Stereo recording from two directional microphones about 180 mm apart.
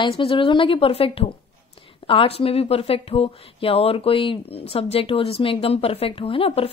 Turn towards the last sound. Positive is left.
turn(degrees=30)  # may be behind; listen again after turning